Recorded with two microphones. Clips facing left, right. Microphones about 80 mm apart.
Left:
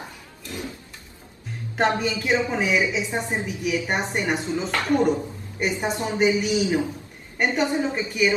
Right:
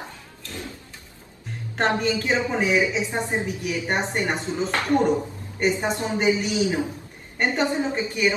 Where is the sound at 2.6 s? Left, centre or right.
Right.